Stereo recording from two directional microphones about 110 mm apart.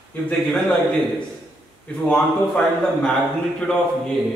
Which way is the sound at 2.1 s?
5° left (ahead or behind).